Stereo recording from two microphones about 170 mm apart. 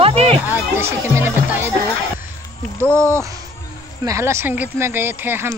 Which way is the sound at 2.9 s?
15° right (ahead or behind).